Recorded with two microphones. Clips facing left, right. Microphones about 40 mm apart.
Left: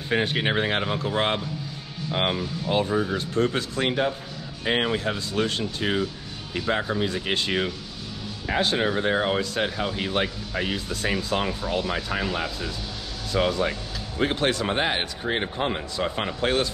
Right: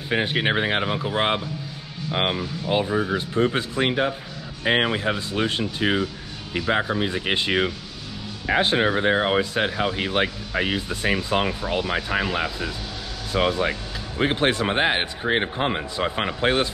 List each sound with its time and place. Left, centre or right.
0.1 s speech: centre